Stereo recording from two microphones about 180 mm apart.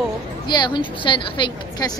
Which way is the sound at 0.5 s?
25° left (ahead or behind).